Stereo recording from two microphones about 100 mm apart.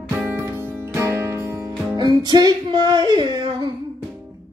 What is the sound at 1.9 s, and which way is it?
Music, 45° right (ahead or behind).